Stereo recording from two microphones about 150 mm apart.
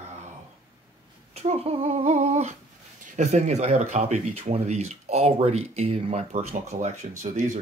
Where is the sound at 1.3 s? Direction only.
45° right (ahead or behind).